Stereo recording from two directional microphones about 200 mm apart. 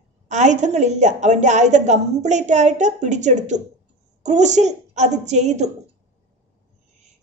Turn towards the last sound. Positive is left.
turn(degrees=-35)  # may be behind; listen again after turning